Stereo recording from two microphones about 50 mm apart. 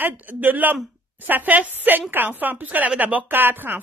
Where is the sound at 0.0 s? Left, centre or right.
Right.